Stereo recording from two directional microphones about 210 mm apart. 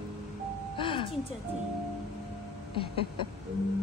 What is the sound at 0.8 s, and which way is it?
Music, 25° left (ahead or behind).